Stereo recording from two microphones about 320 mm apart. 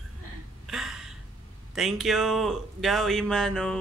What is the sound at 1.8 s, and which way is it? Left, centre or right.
Speech, centre.